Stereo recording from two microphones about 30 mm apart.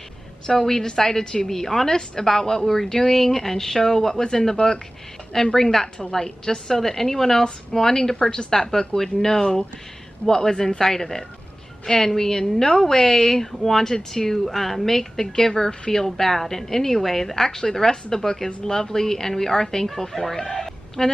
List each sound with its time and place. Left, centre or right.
0.5 s a woman's voice: centre
6.7 s a woman's voice: centre
20.5 s a sound: centre